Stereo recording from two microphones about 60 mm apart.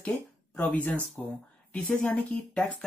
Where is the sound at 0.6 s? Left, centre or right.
Left.